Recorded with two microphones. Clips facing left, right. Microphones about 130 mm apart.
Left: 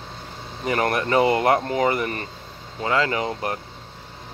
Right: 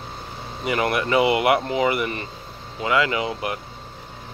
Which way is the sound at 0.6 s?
40° left (ahead or behind).